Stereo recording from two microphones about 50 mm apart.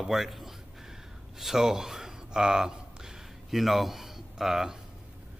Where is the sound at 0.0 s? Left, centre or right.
Centre.